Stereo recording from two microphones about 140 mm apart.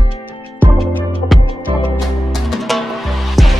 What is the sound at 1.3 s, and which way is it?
Music, centre (ahead or behind).